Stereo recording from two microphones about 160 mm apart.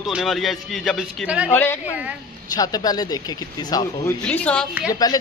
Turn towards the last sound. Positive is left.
turn(degrees=25)  # may be behind; listen again after turning